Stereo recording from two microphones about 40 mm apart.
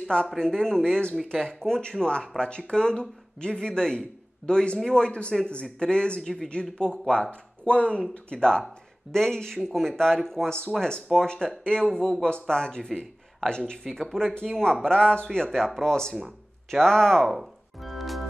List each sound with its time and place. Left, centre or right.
0.0 s speech: left
6.2 s speech: centre
6.5 s speech: centre
17.8 s music: centre